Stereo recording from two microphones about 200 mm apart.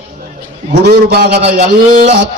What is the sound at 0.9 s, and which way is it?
Speech, 55° right (ahead or behind).